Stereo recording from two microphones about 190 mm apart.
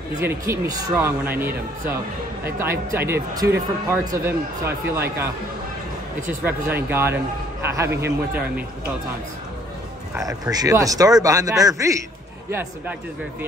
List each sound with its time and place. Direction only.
0.1 s speech: 15° right (ahead or behind)
2.4 s speech: 15° right (ahead or behind)
10.1 s speech: 20° right (ahead or behind)